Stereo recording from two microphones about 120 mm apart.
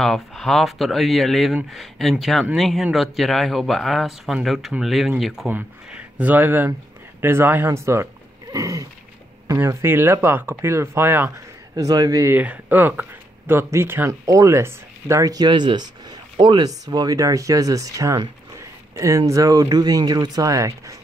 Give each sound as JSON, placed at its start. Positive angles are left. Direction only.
{"t": 0.0, "sound": "speech", "side_deg": 0}
{"t": 11.7, "sound": "speech", "side_deg": -35}
{"t": 12.4, "sound": "speech", "side_deg": -15}